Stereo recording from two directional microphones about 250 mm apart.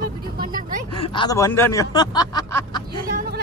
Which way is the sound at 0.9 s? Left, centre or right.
Centre.